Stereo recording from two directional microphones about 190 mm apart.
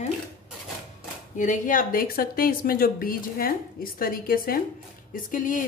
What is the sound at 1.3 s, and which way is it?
A woman's voice, 40° left (ahead or behind).